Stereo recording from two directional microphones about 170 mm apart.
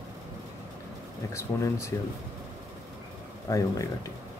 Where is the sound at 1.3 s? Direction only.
15° left (ahead or behind).